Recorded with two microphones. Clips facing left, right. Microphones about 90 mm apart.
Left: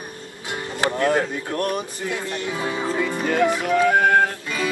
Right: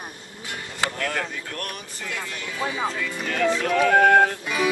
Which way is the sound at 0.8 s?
25° left (ahead or behind).